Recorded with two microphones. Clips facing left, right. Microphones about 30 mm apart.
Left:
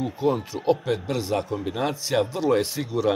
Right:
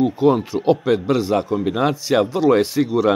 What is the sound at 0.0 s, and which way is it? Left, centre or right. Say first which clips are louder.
Speech: right 8 dB; centre.